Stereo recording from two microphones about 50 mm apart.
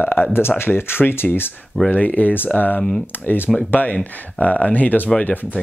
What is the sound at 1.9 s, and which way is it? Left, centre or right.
Speech, left.